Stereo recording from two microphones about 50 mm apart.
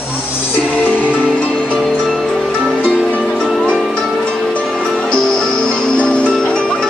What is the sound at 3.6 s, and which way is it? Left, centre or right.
Music, centre.